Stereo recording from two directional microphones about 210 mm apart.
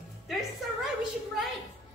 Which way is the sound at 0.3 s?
Centre (ahead or behind).